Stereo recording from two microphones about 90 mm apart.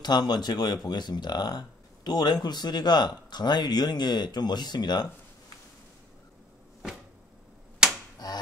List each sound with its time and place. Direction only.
0.0 s speech: 50° left (ahead or behind)
8.2 s finger snapping: 45° left (ahead or behind)